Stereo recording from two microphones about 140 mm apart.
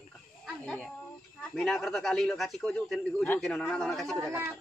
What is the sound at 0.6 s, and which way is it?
Speech, 5° left (ahead or behind).